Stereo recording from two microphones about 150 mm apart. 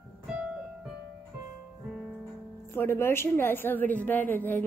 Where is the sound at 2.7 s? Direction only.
15° left (ahead or behind).